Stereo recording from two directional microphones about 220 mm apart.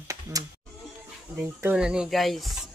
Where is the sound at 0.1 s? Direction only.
15° right (ahead or behind).